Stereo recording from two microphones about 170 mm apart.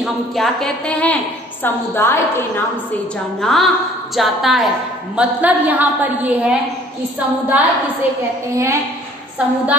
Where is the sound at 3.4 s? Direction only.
Centre (ahead or behind).